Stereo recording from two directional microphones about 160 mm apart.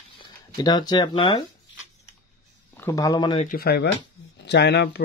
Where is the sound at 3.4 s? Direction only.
75° left (ahead or behind).